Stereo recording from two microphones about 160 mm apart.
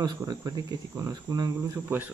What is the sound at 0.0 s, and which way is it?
Speech, 25° right (ahead or behind).